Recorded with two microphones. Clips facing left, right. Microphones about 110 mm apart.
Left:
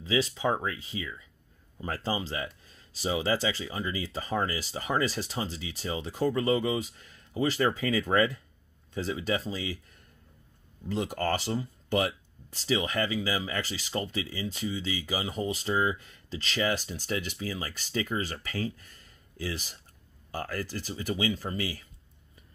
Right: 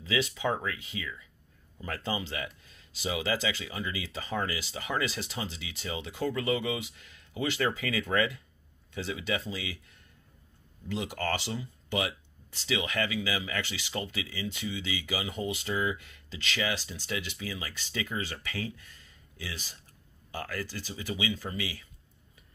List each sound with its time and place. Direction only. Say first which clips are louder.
0.0 s speech: left 2 dB; 35° left (ahead or behind)
10.9 s speech: left 3 dB; 40° left (ahead or behind)